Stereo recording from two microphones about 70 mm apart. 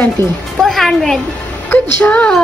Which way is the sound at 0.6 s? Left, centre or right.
Centre.